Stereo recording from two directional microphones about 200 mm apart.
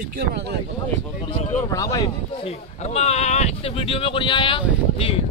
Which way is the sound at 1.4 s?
35° left (ahead or behind).